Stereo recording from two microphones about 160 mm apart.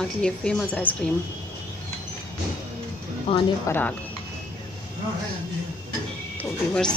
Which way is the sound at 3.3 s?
35° left (ahead or behind).